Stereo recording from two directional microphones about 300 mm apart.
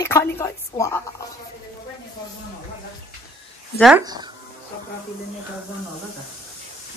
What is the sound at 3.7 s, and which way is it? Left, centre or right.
Speech, centre.